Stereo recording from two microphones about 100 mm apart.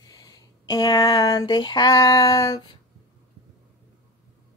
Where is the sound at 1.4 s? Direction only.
50° left (ahead or behind).